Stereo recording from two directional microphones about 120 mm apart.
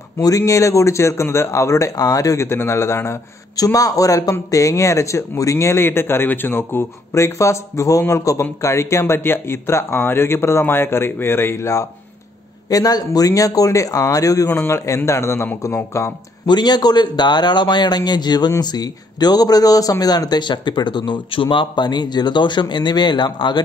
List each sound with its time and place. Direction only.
0.2 s speech: 25° left (ahead or behind)
16.4 s a man's voice: 35° left (ahead or behind)